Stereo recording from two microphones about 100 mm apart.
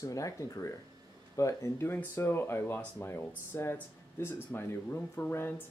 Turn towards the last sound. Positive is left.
turn(degrees=20)  # may be behind; listen again after turning